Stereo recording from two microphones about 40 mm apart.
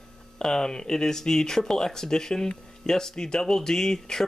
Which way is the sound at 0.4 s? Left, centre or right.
Centre.